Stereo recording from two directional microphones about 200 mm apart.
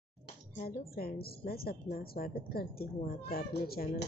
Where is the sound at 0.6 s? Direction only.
45° left (ahead or behind).